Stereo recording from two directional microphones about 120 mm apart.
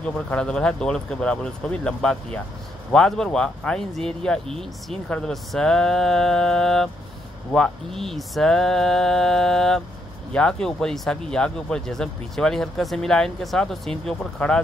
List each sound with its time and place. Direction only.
0.0 s speech: 10° left (ahead or behind)